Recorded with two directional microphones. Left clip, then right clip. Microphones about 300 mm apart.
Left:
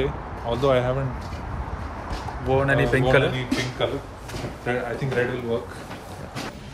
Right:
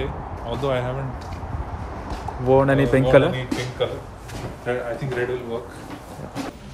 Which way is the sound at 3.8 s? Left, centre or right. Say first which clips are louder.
Even; centre.